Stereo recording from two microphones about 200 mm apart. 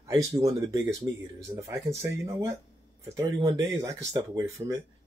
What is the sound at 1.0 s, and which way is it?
Speech, 15° right (ahead or behind).